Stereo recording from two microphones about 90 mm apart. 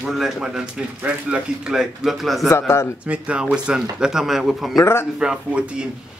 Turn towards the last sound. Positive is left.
turn(degrees=-10)  # may be behind; listen again after turning